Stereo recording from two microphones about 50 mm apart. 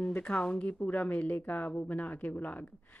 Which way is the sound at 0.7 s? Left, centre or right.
Left.